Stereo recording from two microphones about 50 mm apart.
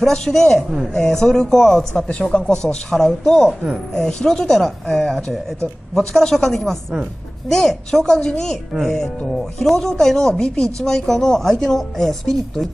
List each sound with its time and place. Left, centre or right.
0.0 s speech: centre
2.0 s speech: centre
9.8 s speech: centre